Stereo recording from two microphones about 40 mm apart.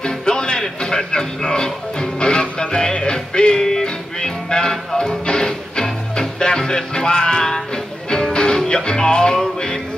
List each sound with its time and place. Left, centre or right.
0.0 s music: left